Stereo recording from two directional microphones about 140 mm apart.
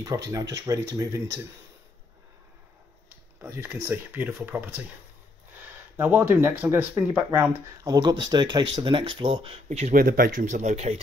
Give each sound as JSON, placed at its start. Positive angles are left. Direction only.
{"t": 0.0, "sound": "speech", "side_deg": -25}
{"t": 3.4, "sound": "speech", "side_deg": -15}
{"t": 5.9, "sound": "speech", "side_deg": -15}
{"t": 7.8, "sound": "speech", "side_deg": -30}
{"t": 9.7, "sound": "speech", "side_deg": -50}
{"t": 9.9, "sound": "speech", "side_deg": -90}